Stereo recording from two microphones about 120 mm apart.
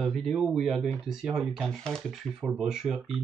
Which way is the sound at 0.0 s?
Centre (ahead or behind).